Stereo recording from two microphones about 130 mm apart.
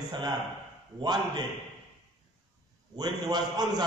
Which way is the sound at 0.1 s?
30° right (ahead or behind).